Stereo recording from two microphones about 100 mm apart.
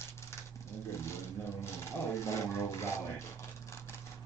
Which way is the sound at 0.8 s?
25° left (ahead or behind).